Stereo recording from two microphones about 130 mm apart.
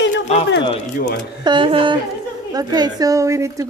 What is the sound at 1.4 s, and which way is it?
Speech, 40° right (ahead or behind).